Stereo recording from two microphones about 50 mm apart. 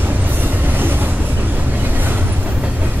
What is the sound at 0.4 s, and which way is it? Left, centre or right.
Train, right.